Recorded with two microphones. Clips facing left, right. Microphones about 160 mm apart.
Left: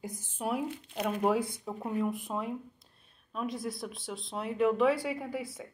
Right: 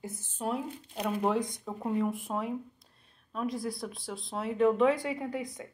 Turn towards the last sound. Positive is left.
turn(degrees=5)  # may be behind; listen again after turning